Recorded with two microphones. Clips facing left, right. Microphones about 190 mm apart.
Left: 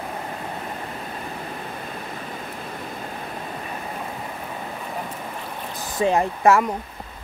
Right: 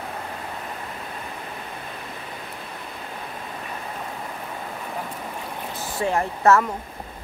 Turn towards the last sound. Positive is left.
turn(degrees=15)  # may be behind; listen again after turning